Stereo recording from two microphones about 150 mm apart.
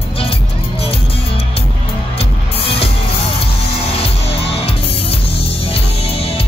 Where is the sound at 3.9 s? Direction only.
40° left (ahead or behind).